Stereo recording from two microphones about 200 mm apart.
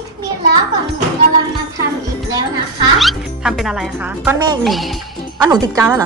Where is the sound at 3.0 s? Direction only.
Centre (ahead or behind).